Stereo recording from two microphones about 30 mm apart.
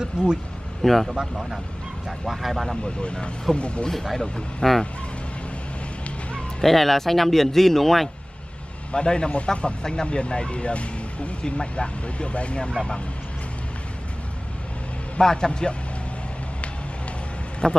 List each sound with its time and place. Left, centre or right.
0.0 s speech: right
0.8 s speech: centre
2.0 s speech: centre
2.8 s speech: left
4.6 s a man's voice: left
6.6 s speech: centre
8.9 s speech: left
15.1 s a man's voice: left
17.6 s a man's voice: left